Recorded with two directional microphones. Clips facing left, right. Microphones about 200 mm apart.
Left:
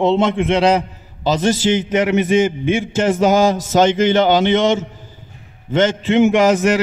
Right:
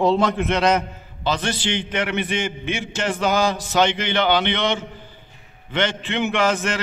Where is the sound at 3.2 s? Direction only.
45° left (ahead or behind).